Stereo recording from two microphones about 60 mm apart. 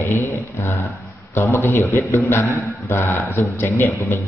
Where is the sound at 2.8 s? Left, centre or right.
Left.